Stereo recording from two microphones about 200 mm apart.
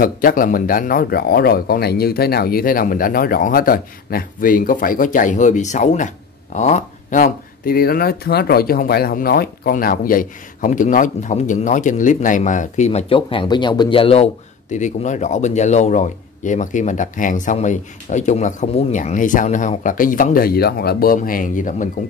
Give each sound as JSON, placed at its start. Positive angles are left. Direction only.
{"t": 0.0, "sound": "speech", "side_deg": 45}